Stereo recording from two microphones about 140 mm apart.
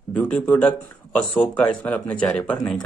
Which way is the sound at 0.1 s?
10° left (ahead or behind).